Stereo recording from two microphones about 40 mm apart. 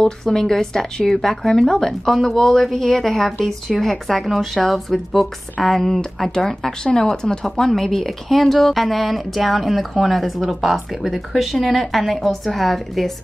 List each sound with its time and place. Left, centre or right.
0.0 s a woman's voice: centre
7.4 s speech: centre